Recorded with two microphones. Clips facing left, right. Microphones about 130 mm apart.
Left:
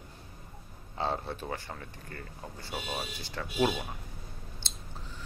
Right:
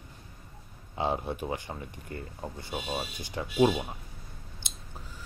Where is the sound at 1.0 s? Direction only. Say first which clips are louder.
Right 3 dB; 15° right (ahead or behind).